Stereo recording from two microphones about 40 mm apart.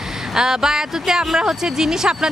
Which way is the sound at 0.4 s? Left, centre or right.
Centre.